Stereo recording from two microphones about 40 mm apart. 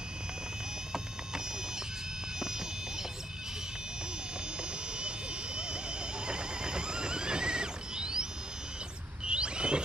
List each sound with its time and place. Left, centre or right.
2.4 s vehicle: centre
5.6 s neigh: right
9.2 s a sound: right